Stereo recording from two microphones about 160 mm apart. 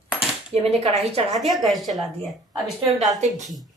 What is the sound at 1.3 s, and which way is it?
Speech, centre (ahead or behind).